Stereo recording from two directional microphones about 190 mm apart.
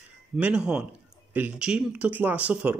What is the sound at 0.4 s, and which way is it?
Speech, 5° right (ahead or behind).